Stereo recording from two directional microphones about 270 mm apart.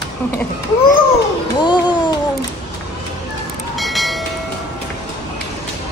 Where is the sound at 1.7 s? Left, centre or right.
Centre.